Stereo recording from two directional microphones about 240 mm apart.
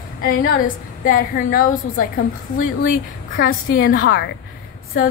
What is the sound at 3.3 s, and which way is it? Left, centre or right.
Speech, left.